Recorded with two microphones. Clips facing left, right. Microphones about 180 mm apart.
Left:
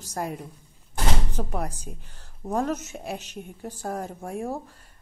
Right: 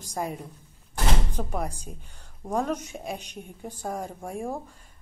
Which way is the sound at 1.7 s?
5° left (ahead or behind).